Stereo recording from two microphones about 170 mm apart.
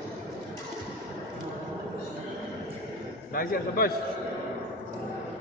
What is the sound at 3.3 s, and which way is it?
Speech, 60° left (ahead or behind).